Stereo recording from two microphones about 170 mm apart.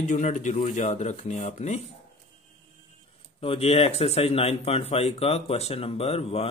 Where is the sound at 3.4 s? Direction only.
35° left (ahead or behind).